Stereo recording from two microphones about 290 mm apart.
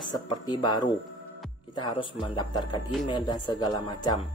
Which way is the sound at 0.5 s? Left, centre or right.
Centre.